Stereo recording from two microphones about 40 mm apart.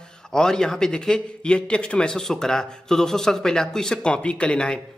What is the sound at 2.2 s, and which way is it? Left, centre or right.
A man's voice, centre.